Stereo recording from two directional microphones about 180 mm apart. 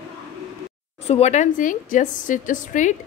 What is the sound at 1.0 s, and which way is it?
A woman's voice, 35° left (ahead or behind).